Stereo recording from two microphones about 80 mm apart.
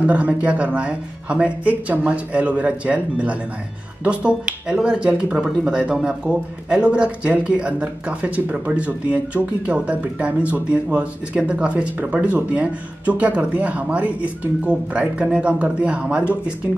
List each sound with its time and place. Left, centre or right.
0.0 s speech: centre